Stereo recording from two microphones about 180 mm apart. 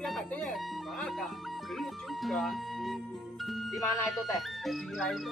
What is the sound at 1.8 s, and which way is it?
Speech, centre (ahead or behind).